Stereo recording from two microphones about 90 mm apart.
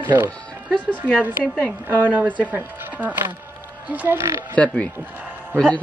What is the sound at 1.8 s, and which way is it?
Speech, 20° right (ahead or behind).